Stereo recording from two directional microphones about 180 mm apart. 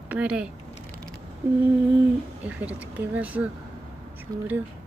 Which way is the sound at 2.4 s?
10° right (ahead or behind).